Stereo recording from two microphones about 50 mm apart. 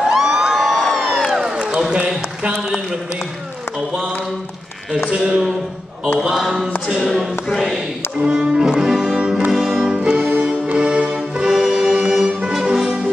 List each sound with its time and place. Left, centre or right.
0.0 s crowd: centre
0.6 s crowd: centre
1.4 s a sound: centre
5.1 s speech: centre
6.1 s speech: centre
8.2 s music: centre
9.5 s music: centre
9.8 s music: centre